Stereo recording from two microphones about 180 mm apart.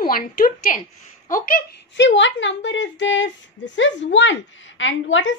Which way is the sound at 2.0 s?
90° left.